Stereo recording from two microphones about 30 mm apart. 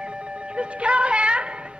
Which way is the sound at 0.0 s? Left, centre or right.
Right.